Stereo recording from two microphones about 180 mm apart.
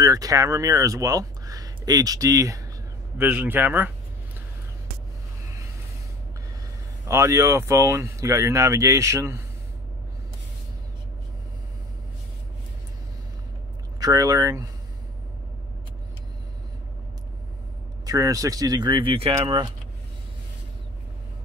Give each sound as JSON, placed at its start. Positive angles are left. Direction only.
{"t": 0.0, "sound": "speech", "side_deg": -20}
{"t": 7.1, "sound": "speech", "side_deg": -15}
{"t": 13.9, "sound": "speech", "side_deg": -20}
{"t": 18.0, "sound": "speech", "side_deg": -20}